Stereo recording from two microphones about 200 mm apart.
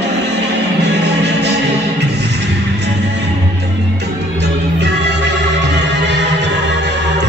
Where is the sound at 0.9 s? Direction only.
60° right (ahead or behind).